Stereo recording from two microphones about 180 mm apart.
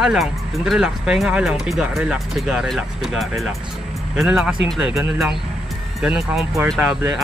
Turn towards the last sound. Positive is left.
turn(degrees=-10)  # may be behind; listen again after turning